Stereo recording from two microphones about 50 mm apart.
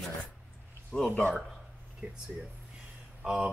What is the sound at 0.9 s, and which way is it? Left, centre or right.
Speech, centre.